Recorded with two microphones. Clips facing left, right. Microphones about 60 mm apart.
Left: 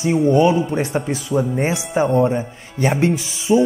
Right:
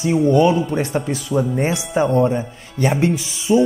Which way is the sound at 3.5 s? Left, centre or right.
Centre.